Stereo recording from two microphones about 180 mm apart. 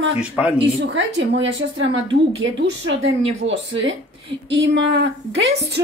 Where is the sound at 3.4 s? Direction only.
90° right.